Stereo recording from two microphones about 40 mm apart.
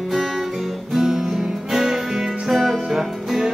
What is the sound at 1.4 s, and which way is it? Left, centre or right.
Music, centre.